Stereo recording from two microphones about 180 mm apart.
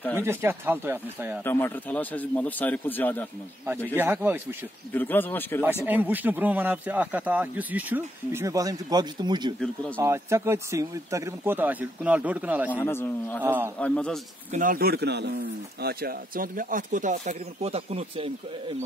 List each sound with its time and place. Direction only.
0.1 s speech: 15° right (ahead or behind)
1.4 s speech: 10° left (ahead or behind)
3.9 s speech: 10° right (ahead or behind)
4.9 s speech: 10° left (ahead or behind)
5.9 s speech: 10° right (ahead or behind)
12.7 s speech: 10° left (ahead or behind)
13.4 s speech: 10° right (ahead or behind)
13.7 s a man's voice: 5° left (ahead or behind)
14.5 s speech: 50° right (ahead or behind); by 18.8 s 30° right (ahead or behind)